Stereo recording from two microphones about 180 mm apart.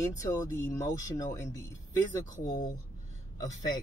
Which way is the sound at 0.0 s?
20° left (ahead or behind).